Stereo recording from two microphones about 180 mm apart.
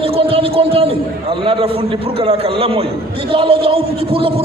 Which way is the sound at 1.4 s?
30° right (ahead or behind).